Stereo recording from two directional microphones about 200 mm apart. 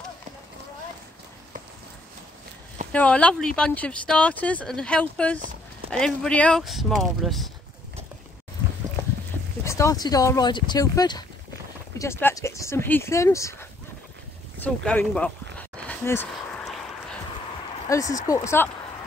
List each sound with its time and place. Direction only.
2.9 s speech: 5° left (ahead or behind)
9.7 s speech: 15° left (ahead or behind)
15.9 s a sound: 10° left (ahead or behind)
17.8 s speech: 15° left (ahead or behind)